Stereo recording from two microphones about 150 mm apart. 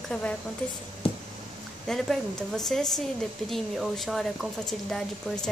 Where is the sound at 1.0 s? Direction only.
40° left (ahead or behind).